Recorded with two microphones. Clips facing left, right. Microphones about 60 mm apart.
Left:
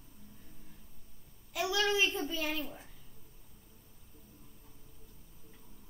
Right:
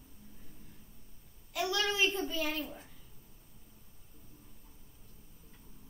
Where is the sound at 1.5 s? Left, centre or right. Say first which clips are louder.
Left 2 dB; centre.